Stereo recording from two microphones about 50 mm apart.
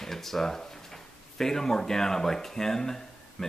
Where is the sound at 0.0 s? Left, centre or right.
Centre.